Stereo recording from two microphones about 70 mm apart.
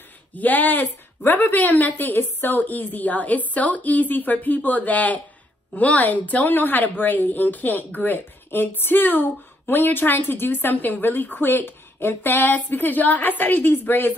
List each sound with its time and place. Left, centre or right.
0.3 s speech: left